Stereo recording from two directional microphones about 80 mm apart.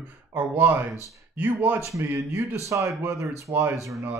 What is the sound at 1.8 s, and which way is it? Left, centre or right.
Speech, right.